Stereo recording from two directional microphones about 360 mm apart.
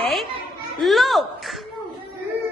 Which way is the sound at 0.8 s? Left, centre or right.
Centre.